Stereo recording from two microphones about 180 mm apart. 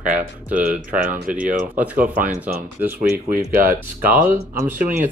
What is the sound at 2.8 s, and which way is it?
Speech, 10° right (ahead or behind).